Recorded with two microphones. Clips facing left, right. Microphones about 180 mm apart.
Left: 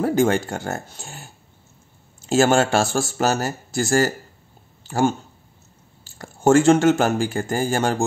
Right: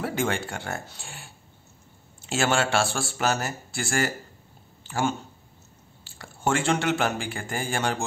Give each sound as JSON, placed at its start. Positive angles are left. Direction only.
{"t": 0.0, "sound": "speech", "side_deg": 40}